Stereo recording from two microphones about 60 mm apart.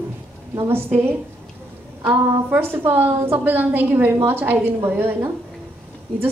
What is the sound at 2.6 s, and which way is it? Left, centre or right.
A woman's voice, right.